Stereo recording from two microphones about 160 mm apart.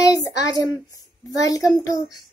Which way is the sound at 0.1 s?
20° left (ahead or behind).